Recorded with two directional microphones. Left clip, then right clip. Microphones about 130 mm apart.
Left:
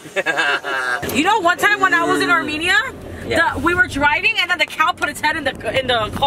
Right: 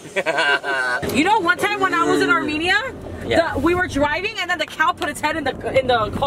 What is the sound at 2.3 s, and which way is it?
Speech, 25° left (ahead or behind).